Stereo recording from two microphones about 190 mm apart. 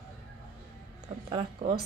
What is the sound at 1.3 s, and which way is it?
Speech, 25° right (ahead or behind).